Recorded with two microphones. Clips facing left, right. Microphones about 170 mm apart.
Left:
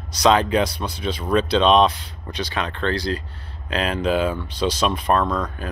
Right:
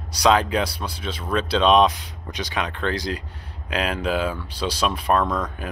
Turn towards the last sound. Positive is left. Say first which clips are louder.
# left 1 dB
turn(degrees=0)  # may be behind; listen again after turning